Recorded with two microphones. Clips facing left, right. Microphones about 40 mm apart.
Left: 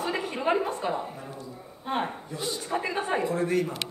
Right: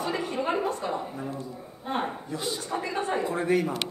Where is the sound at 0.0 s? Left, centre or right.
Centre.